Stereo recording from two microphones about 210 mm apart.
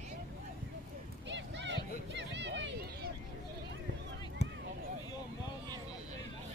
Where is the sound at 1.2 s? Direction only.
60° right (ahead or behind).